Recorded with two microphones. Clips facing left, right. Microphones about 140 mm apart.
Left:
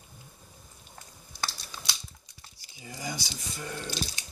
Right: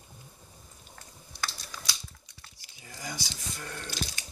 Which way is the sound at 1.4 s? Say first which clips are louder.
Left 1 dB; 25° left (ahead or behind).